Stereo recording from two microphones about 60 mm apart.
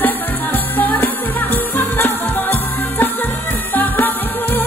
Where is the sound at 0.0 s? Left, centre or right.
Left.